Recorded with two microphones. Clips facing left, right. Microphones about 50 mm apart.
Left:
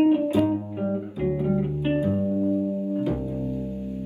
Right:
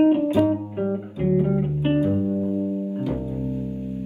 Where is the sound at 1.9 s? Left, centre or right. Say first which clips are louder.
Right 3 dB; right.